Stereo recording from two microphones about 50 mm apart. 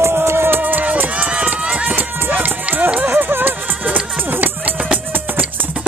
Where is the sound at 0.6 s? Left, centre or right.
Right.